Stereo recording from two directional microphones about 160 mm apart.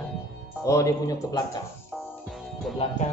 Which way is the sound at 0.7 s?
20° left (ahead or behind).